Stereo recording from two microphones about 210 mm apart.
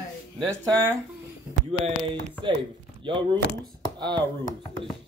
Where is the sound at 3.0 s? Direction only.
25° right (ahead or behind).